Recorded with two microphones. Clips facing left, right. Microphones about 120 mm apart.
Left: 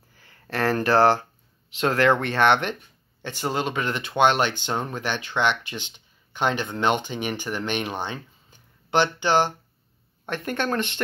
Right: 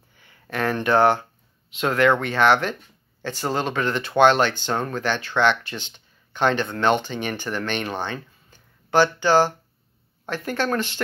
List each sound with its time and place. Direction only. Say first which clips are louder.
0.7 s speech: even; 35° left (ahead or behind)